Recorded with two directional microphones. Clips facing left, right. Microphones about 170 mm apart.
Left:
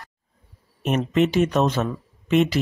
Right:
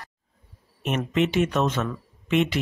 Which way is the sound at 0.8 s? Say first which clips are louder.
Left 4 dB; 40° left (ahead or behind).